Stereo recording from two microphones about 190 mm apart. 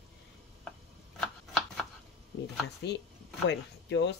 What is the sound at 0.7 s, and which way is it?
Chopping, 5° left (ahead or behind).